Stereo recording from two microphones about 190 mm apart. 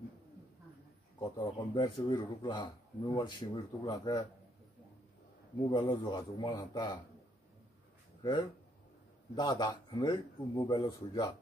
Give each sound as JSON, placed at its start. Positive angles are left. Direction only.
{"t": 1.2, "sound": "speech", "side_deg": 20}
{"t": 5.7, "sound": "speech", "side_deg": 25}
{"t": 8.2, "sound": "speech", "side_deg": 25}